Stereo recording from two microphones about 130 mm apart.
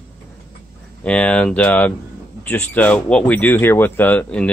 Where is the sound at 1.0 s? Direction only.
10° left (ahead or behind).